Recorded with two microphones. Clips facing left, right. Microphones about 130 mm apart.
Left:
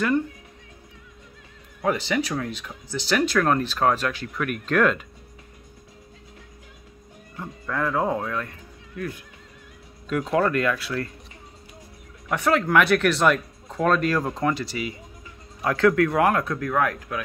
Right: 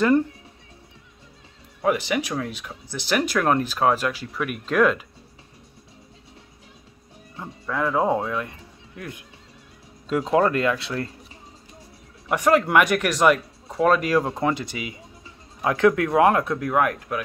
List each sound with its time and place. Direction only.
1.9 s speech: 15° right (ahead or behind)
7.6 s speech: 5° right (ahead or behind)
8.1 s speech: 25° right (ahead or behind)
12.3 s speech: 10° right (ahead or behind)